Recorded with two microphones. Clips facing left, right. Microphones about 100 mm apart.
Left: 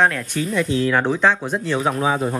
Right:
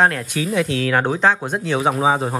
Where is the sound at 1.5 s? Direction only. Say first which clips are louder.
Right 1 dB; 5° right (ahead or behind).